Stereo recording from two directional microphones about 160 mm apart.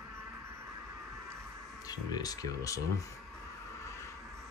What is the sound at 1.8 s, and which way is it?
Speech, 25° left (ahead or behind).